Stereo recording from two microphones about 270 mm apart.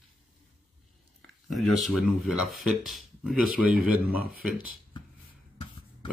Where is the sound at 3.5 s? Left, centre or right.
Right.